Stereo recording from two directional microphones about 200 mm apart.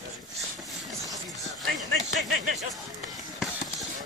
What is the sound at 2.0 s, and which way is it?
Speech, 40° right (ahead or behind).